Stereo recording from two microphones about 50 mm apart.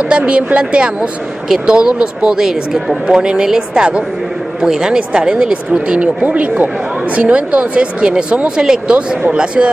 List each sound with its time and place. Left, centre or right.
0.1 s speech: right